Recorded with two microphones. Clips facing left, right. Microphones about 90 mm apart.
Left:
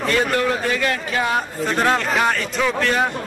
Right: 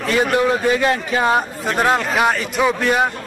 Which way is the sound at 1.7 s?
10° right (ahead or behind).